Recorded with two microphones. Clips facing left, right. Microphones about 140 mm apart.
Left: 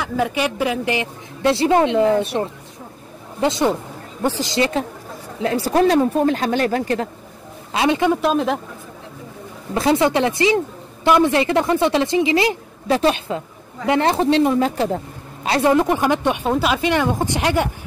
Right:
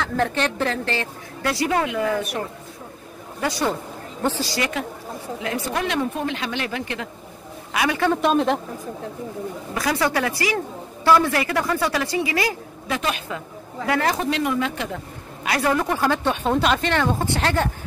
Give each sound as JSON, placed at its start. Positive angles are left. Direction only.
{"t": 0.0, "sound": "a woman's voice", "side_deg": 10}
{"t": 1.5, "sound": "a woman's voice", "side_deg": 25}
{"t": 7.7, "sound": "a woman's voice", "side_deg": 25}
{"t": 8.1, "sound": "speech", "side_deg": 0}
{"t": 9.8, "sound": "a woman's voice", "side_deg": 25}
{"t": 15.4, "sound": "a woman's voice", "side_deg": 25}